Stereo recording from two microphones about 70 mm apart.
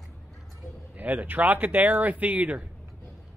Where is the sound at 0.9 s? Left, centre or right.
Right.